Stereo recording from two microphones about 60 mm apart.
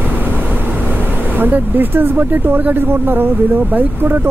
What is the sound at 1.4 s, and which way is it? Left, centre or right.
Speech, right.